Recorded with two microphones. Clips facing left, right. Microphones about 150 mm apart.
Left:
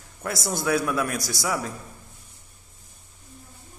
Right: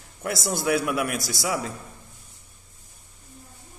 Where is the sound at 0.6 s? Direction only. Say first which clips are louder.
Even; 20° right (ahead or behind).